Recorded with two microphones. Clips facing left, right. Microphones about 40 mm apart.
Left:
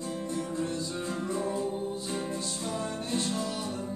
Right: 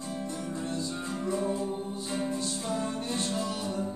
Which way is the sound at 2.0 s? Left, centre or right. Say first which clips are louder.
Right 2 dB; centre.